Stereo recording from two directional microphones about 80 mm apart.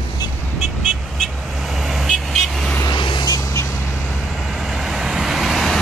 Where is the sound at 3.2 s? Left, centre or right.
Left.